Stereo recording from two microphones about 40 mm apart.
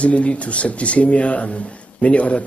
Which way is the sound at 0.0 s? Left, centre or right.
Left.